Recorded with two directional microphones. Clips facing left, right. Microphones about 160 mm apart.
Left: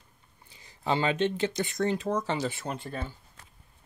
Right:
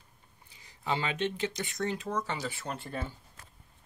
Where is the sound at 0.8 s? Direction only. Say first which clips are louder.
Left 5 dB; 30° left (ahead or behind).